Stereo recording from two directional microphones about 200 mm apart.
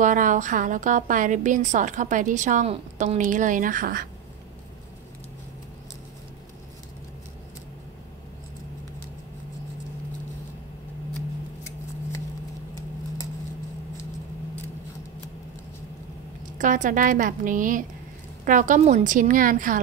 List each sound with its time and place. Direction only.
0.0 s a woman's voice: 40° right (ahead or behind)
16.5 s a woman's voice: 40° right (ahead or behind)